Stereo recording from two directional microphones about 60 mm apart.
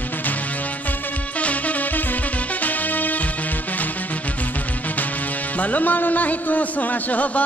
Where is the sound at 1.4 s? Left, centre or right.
Left.